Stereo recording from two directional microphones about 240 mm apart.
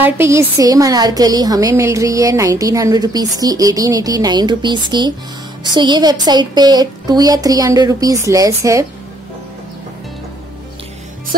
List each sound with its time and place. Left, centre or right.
0.0 s a woman's voice: centre